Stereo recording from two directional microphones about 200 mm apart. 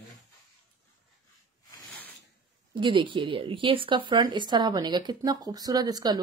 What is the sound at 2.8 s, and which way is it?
Speech, 25° right (ahead or behind).